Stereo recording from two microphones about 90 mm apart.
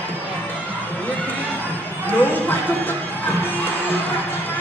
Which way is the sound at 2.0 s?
20° left (ahead or behind).